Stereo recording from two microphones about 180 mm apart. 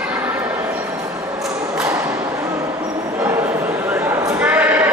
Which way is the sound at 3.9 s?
10° right (ahead or behind).